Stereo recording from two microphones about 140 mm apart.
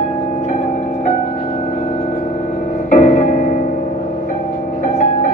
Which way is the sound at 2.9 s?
65° left (ahead or behind).